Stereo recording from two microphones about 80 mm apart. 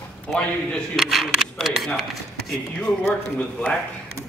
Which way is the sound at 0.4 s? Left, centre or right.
Centre.